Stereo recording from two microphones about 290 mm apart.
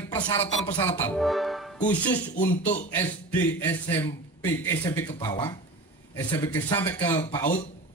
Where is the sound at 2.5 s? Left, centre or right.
Left.